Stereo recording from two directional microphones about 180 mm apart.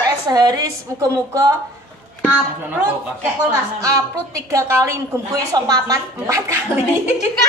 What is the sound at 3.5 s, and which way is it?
A woman's voice, 20° right (ahead or behind).